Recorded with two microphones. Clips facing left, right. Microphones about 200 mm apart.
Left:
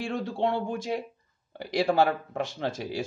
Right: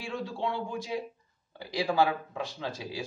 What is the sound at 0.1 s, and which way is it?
Speech, 60° left (ahead or behind).